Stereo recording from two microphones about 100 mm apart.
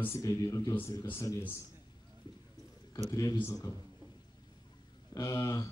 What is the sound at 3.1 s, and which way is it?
Speech, 35° left (ahead or behind).